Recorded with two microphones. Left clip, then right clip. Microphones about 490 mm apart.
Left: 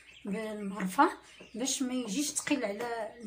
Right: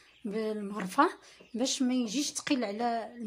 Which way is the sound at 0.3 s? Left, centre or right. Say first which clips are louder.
Right 4 dB; right.